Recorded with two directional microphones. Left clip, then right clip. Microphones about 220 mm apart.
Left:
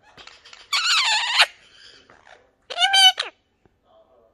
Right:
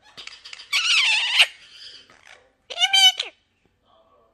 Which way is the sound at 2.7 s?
15° right (ahead or behind).